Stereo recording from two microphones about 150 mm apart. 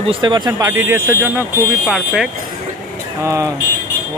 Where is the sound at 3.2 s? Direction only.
20° right (ahead or behind).